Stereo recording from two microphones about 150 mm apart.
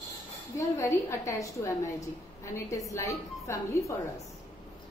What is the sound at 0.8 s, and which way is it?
A woman's voice, 20° left (ahead or behind).